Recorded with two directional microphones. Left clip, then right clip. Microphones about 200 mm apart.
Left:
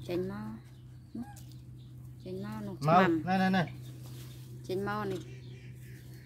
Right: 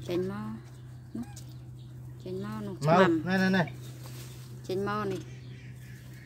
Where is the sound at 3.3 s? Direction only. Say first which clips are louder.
Right 2 dB; 15° right (ahead or behind).